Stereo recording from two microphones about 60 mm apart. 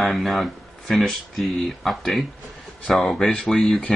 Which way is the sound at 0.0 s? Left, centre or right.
Centre.